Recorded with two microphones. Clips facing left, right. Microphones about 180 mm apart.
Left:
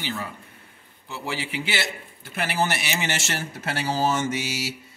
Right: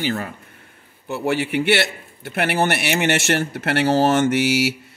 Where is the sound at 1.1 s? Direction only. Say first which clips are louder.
Right 10 dB; 60° right (ahead or behind).